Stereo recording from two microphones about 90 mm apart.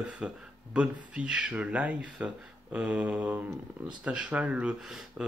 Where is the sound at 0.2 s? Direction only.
10° right (ahead or behind).